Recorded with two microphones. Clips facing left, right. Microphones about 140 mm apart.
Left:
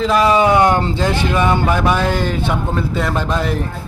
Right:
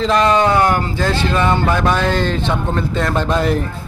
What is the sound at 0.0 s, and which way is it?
Speech, 5° left (ahead or behind).